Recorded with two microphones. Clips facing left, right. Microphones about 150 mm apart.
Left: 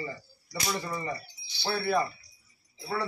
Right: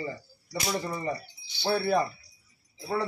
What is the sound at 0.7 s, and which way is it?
A man's voice, 25° right (ahead or behind).